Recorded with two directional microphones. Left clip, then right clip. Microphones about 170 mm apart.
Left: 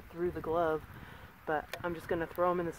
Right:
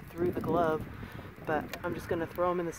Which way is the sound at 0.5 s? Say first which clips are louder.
Right 2 dB; 15° right (ahead or behind).